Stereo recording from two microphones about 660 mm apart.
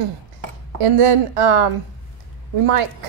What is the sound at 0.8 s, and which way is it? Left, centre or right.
A woman's voice, right.